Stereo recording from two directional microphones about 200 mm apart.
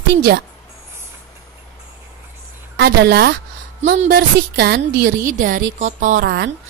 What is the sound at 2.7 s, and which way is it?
A woman's voice, 55° right (ahead or behind).